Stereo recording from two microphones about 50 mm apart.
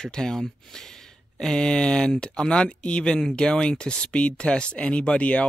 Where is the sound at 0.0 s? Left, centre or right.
Centre.